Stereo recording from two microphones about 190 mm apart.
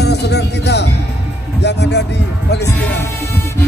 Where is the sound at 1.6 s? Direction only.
60° left (ahead or behind).